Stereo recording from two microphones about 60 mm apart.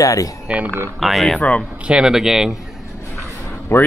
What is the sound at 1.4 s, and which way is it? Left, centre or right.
Speech, centre.